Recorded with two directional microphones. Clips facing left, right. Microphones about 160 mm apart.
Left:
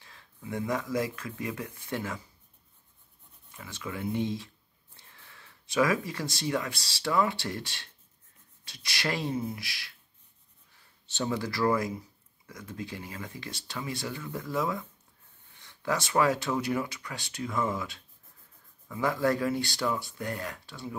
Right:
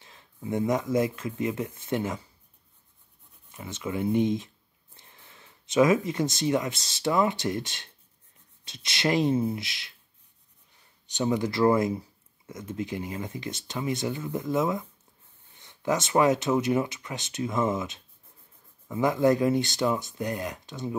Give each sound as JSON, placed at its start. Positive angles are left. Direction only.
{"t": 0.0, "sound": "speech", "side_deg": -20}
{"t": 3.5, "sound": "speech", "side_deg": -20}
{"t": 11.1, "sound": "speech", "side_deg": -15}